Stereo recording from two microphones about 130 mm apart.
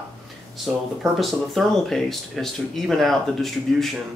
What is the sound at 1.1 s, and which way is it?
Speech, centre (ahead or behind).